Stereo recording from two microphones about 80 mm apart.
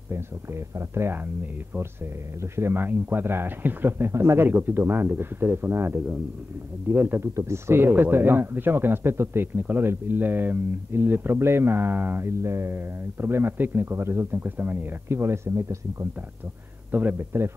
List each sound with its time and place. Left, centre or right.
0.1 s speech: right
7.3 s speech: right
16.9 s speech: right